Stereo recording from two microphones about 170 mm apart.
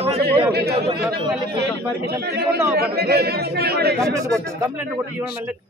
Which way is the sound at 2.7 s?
70° right (ahead or behind).